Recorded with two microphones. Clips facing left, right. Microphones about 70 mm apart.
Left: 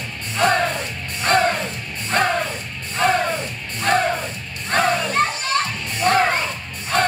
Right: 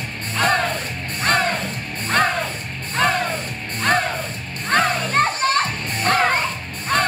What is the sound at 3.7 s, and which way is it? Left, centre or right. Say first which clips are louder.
Music: left 1 dB; right.